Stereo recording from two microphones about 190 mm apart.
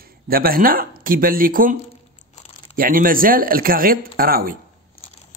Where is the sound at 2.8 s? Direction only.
50° right (ahead or behind).